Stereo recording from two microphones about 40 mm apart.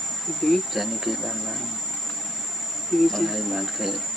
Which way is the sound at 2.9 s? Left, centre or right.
Centre.